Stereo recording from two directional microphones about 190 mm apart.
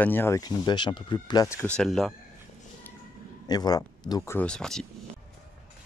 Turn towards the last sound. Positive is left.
turn(degrees=5)  # may be behind; listen again after turning